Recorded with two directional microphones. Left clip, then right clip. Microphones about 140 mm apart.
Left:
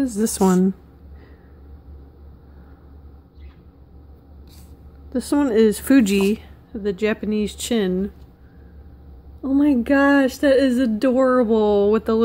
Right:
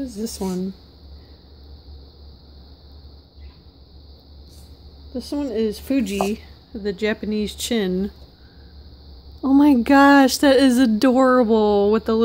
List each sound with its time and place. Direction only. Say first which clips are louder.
0.4 s speech: left 11 dB; 60° left (ahead or behind)
5.1 s speech: left 6 dB; 55° left (ahead or behind)
6.1 s speech: left 3 dB; 30° left (ahead or behind)
6.7 s speech: left 1 dB; centre (ahead or behind)
9.4 s speech: right 3 dB; 40° right (ahead or behind); by 12.2 s 15° right (ahead or behind)